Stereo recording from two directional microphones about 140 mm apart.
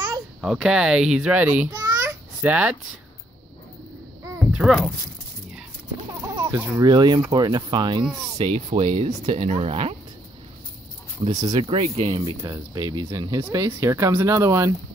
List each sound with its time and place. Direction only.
0.4 s a child's voice: centre (ahead or behind)
4.5 s speech: 5° right (ahead or behind)
6.2 s chicken: 20° right (ahead or behind)
6.8 s speech: 30° right (ahead or behind)
8.4 s speech: 45° right (ahead or behind)
11.2 s speech: 30° right (ahead or behind)
11.7 s speech: 45° right (ahead or behind)
12.3 s speech: 30° right (ahead or behind)
13.4 s speech: 20° right (ahead or behind)